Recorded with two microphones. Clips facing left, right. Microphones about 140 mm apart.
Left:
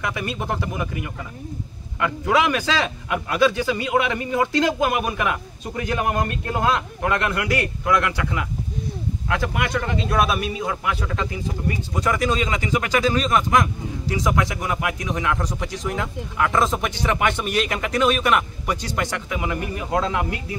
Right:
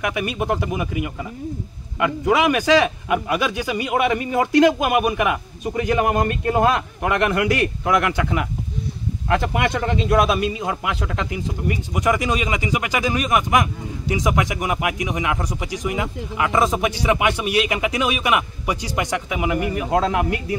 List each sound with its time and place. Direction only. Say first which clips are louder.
0.0 s a man's voice: right 4 dB; 15° right (ahead or behind)